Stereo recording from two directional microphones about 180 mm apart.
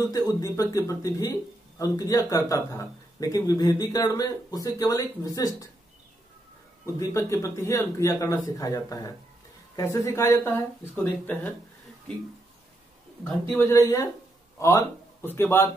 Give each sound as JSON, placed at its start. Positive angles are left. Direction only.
{"t": 0.3, "sound": "a man's voice", "side_deg": 20}
{"t": 7.0, "sound": "a man's voice", "side_deg": 15}
{"t": 13.2, "sound": "speech", "side_deg": 10}